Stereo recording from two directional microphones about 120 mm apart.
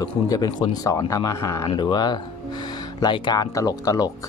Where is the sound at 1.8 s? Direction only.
35° left (ahead or behind).